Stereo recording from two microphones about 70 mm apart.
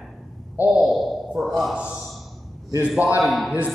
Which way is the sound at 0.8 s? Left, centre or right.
Centre.